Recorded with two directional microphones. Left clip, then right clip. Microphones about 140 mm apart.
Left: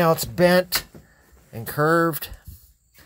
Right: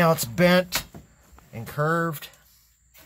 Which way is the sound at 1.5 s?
30° left (ahead or behind).